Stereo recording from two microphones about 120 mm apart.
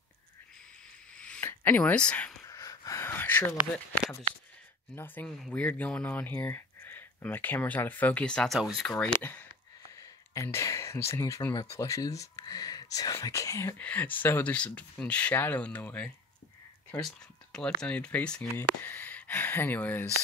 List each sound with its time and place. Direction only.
1.1 s a sound: 10° left (ahead or behind)
1.4 s a sound: 20° left (ahead or behind)
1.8 s speech: 10° left (ahead or behind)
2.5 s gasp: 30° left (ahead or behind)
4.9 s speech: 15° left (ahead or behind)
10.3 s speech: 25° left (ahead or behind)
13.7 s speech: 15° left (ahead or behind)